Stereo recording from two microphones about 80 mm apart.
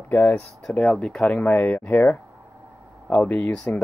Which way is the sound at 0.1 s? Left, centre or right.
Left.